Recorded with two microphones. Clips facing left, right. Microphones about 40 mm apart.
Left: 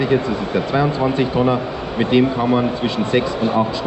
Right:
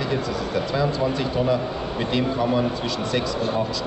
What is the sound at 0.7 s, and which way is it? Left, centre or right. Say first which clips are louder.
A man's voice: left 6 dB; left.